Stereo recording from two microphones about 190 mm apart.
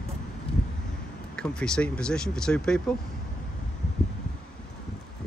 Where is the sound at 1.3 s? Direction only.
5° left (ahead or behind).